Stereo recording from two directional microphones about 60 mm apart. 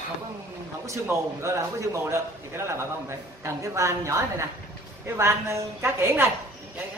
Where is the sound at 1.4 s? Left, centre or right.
Right.